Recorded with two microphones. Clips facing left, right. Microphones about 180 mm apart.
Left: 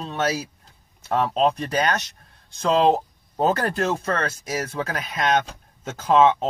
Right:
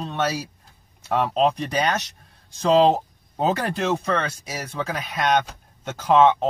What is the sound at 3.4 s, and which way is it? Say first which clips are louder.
Speech: left 1 dB; centre (ahead or behind).